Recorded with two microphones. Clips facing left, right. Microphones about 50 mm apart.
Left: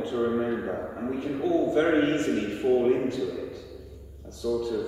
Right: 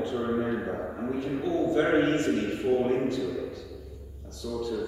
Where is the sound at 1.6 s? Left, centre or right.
Centre.